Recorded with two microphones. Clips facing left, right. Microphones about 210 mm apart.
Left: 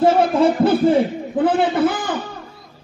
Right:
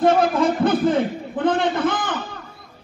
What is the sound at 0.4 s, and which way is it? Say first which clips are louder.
A man's voice: left 3 dB; 10° left (ahead or behind).